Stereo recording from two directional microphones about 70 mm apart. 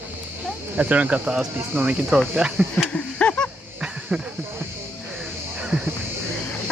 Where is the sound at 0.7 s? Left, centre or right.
Right.